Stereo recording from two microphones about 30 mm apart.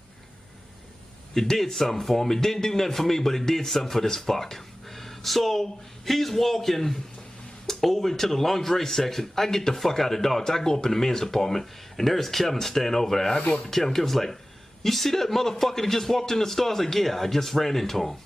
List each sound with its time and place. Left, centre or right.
1.3 s speech: centre
13.4 s speech: left
13.7 s speech: centre